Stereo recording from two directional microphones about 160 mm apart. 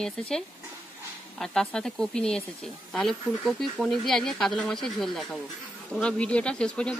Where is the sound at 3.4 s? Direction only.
Centre (ahead or behind).